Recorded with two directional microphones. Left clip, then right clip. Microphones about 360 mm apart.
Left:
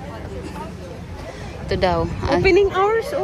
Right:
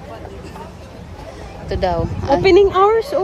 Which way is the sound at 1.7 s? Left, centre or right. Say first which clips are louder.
Even; centre.